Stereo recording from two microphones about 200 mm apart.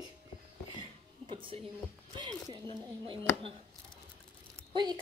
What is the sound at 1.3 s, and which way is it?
A woman's voice, 25° right (ahead or behind).